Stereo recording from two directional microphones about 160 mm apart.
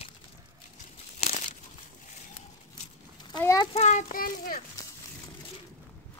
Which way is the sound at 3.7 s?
45° left (ahead or behind).